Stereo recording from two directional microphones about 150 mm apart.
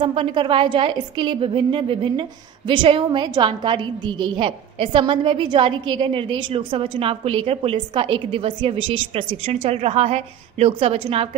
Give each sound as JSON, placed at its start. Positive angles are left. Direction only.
{"t": 0.0, "sound": "a woman's voice", "side_deg": -35}